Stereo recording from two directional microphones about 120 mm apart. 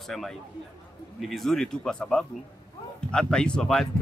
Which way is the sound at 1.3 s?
5° left (ahead or behind).